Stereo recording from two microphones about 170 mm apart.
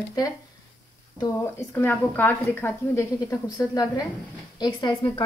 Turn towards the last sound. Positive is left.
turn(degrees=30)  # may be behind; listen again after turning